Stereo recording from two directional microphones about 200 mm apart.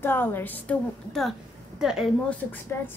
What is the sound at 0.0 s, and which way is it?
A woman's voice, 10° left (ahead or behind).